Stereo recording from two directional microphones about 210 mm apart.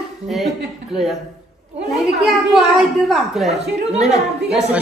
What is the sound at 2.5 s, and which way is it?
A woman's voice, centre (ahead or behind).